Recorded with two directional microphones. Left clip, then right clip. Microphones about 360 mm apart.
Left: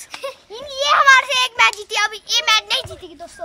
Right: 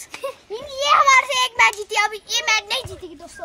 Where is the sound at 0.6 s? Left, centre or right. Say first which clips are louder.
Left 1 dB; centre.